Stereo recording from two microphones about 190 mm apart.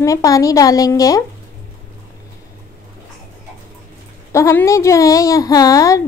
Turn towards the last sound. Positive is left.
turn(degrees=15)  # may be behind; listen again after turning